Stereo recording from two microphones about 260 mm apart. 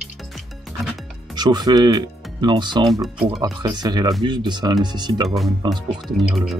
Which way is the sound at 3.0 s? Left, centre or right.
Centre.